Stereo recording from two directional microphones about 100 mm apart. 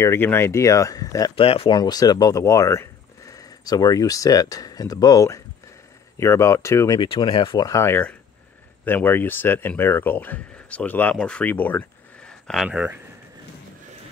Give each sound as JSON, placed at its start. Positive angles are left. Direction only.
{"t": 0.0, "sound": "speech", "side_deg": 25}
{"t": 1.3, "sound": "speech", "side_deg": 70}
{"t": 1.8, "sound": "speech", "side_deg": 45}
{"t": 7.0, "sound": "speech", "side_deg": 55}
{"t": 7.8, "sound": "speech", "side_deg": 20}
{"t": 12.3, "sound": "a sound", "side_deg": 5}
{"t": 12.6, "sound": "speech", "side_deg": -15}